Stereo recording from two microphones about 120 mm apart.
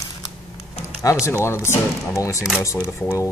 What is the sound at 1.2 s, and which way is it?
Speech, 25° left (ahead or behind).